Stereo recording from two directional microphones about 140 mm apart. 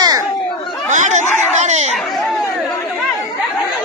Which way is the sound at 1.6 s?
55° right (ahead or behind).